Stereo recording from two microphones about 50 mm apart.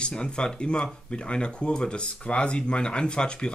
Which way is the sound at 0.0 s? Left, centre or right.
Centre.